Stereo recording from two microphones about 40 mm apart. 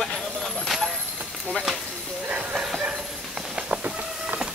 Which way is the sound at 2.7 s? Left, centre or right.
Right.